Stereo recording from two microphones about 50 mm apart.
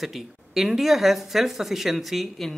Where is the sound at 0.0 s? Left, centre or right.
Centre.